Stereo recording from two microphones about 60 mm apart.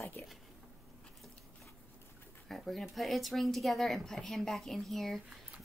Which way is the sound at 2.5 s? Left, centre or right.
Centre.